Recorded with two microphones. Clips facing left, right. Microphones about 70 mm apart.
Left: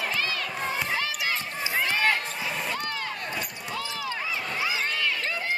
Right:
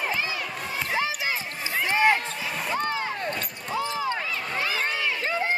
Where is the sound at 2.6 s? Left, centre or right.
Centre.